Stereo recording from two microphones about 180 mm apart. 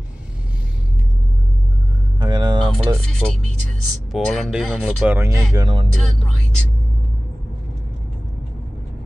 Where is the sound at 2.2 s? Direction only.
25° right (ahead or behind).